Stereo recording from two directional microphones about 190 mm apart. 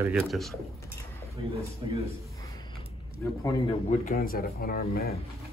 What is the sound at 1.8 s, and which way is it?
Speech, 25° right (ahead or behind).